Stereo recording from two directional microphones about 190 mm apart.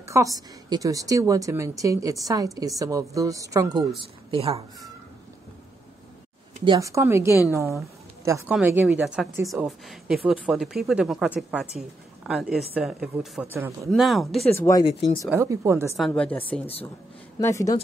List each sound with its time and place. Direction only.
0.0 s a woman's voice: 15° right (ahead or behind); by 4.6 s 30° right (ahead or behind)
6.6 s a woman's voice: 20° right (ahead or behind)
13.8 s a woman's voice: centre (ahead or behind)
14.5 s speech: 15° left (ahead or behind)
14.9 s speech: 30° left (ahead or behind)
15.2 s a woman's voice: 15° right (ahead or behind)
16.1 s speech: 10° left (ahead or behind)
17.4 s speech: 15° left (ahead or behind)